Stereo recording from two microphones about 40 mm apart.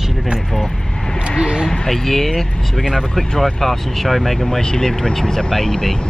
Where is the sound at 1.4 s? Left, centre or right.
Centre.